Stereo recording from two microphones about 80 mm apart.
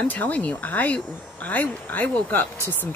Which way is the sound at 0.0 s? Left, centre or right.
Left.